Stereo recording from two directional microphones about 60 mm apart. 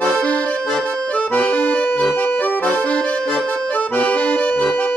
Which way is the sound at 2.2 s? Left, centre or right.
Left.